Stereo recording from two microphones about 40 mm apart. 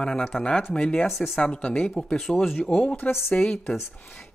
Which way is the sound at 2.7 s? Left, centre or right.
Left.